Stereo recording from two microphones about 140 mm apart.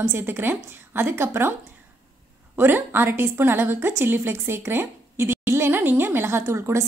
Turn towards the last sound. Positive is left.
turn(degrees=-20)  # may be behind; listen again after turning